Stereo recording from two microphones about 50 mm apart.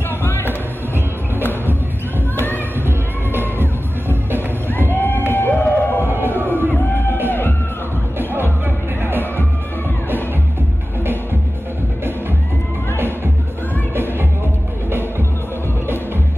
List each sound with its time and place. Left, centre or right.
0.2 s music: left
2.3 s a sound: left
3.3 s music: right
4.6 s a sound: left
5.3 s music: left
6.4 s crowd: right
7.2 s music: left
14.9 s music: right